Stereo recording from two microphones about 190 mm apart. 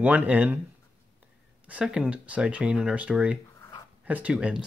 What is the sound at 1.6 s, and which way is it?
Speech, 5° right (ahead or behind).